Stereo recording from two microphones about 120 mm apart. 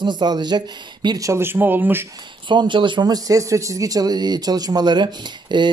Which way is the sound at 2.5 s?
40° right (ahead or behind).